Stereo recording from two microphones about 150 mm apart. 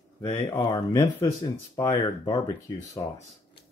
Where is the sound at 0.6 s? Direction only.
25° left (ahead or behind).